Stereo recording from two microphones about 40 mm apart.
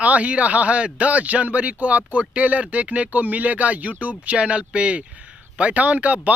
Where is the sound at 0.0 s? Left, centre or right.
Right.